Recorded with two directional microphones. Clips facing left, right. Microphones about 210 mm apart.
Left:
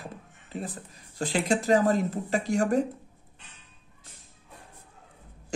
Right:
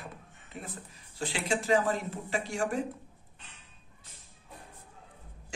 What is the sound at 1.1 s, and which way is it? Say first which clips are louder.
Speech: left 6 dB; 40° left (ahead or behind).